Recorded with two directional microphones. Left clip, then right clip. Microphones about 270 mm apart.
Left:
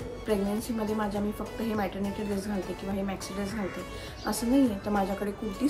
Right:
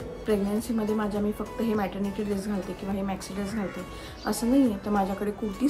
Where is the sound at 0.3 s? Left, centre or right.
Centre.